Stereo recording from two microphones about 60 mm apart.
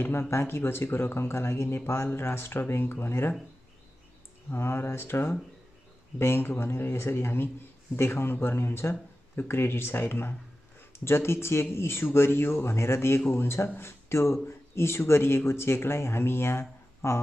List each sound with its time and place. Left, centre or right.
0.0 s speech: left
4.5 s speech: left